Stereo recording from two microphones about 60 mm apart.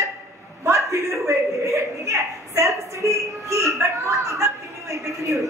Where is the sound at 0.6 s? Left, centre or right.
Right.